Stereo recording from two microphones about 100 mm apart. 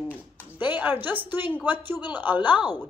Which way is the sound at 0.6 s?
15° right (ahead or behind).